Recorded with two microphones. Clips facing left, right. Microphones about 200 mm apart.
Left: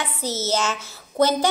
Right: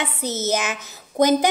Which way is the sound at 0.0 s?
20° right (ahead or behind).